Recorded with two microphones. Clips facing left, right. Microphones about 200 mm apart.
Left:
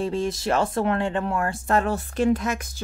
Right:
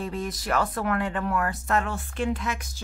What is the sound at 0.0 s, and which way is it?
Speech, 30° left (ahead or behind).